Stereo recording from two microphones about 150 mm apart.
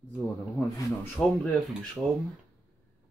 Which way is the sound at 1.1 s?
5° left (ahead or behind).